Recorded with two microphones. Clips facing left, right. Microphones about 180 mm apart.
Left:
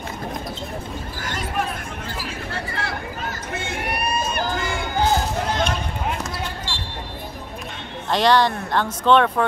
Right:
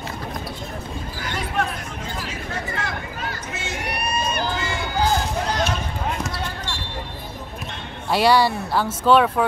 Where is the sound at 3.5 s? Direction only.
55° left (ahead or behind).